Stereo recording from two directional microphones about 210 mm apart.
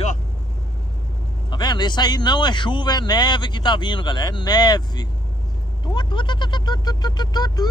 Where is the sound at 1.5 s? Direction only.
20° left (ahead or behind).